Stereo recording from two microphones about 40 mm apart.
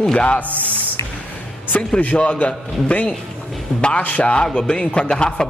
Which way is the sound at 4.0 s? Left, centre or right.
Left.